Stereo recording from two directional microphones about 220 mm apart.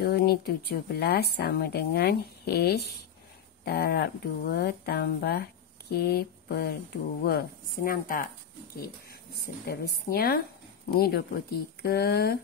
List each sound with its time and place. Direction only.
0.0 s speech: 45° left (ahead or behind)
9.4 s speech: 45° left (ahead or behind)